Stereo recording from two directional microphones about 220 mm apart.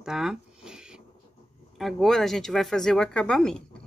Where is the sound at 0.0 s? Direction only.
Centre (ahead or behind).